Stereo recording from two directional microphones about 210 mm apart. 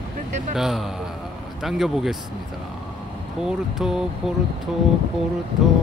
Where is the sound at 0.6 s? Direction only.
Centre (ahead or behind).